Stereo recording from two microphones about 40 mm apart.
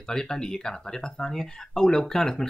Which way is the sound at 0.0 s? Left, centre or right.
Centre.